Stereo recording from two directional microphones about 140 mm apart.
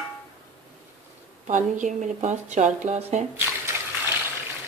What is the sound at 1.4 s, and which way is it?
Speech, 65° right (ahead or behind).